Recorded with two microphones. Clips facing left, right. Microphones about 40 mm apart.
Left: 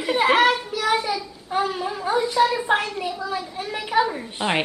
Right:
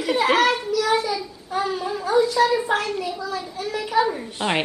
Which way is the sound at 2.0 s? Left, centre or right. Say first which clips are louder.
Right 1 dB; left.